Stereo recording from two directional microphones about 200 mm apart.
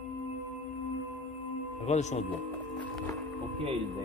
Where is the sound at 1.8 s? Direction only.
35° left (ahead or behind).